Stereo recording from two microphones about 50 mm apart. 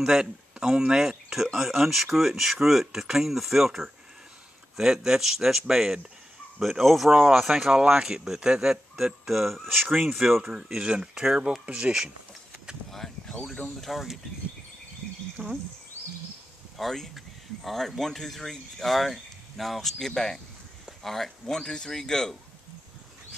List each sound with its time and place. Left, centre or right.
0.0 s speech: centre
10.6 s speech: centre
13.3 s speech: centre
13.7 s speech: centre
15.4 s speech: right
16.7 s speech: centre